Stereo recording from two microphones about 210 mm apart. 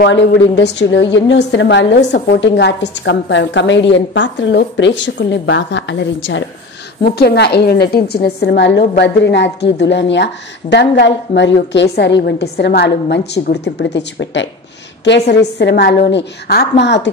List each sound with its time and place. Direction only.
0.0 s a woman's voice: 55° left (ahead or behind)
7.0 s a woman's voice: 50° left (ahead or behind)